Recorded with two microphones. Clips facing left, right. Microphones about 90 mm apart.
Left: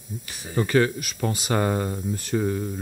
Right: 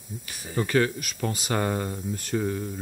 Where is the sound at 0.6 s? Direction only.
10° left (ahead or behind).